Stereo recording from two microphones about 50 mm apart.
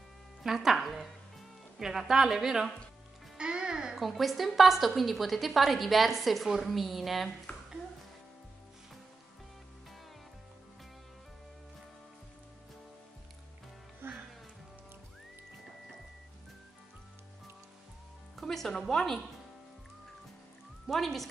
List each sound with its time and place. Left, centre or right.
0.4 s speech: centre
3.3 s music: centre
3.9 s a woman's voice: centre
7.5 s a sound: left
14.0 s music: right
18.4 s music: centre
20.8 s speech: centre